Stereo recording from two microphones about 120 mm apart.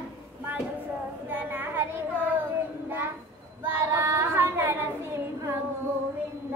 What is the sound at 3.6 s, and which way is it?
Child singing, 20° right (ahead or behind).